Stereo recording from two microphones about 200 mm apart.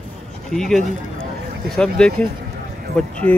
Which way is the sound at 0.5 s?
Centre (ahead or behind).